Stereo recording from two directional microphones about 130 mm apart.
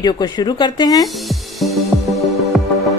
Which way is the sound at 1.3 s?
Centre (ahead or behind).